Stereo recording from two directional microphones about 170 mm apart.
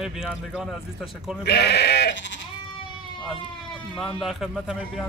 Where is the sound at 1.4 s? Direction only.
75° left (ahead or behind).